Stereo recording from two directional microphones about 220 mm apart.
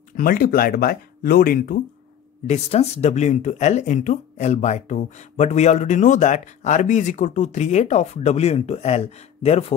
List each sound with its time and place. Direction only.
0.2 s speech: 40° left (ahead or behind)
2.4 s speech: 30° left (ahead or behind)